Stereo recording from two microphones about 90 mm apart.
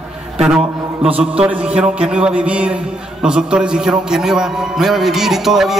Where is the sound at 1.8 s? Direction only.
10° right (ahead or behind).